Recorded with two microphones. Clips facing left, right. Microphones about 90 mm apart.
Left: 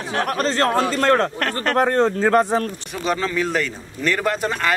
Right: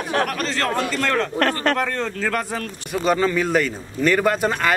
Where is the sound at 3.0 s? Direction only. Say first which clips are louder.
Right 2 dB; centre (ahead or behind).